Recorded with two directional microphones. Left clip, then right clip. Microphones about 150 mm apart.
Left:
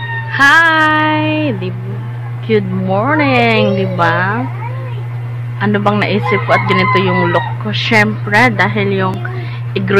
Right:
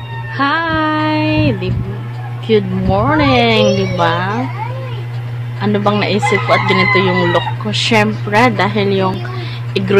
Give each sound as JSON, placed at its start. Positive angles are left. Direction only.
{"t": 0.3, "sound": "speech", "side_deg": -10}
{"t": 5.6, "sound": "speech", "side_deg": -10}